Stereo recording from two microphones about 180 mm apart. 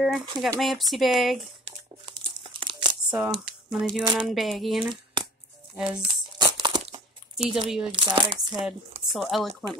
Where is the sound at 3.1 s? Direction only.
5° right (ahead or behind).